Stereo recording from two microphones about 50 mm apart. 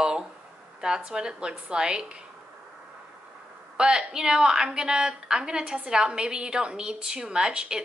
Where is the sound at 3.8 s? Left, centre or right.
Centre.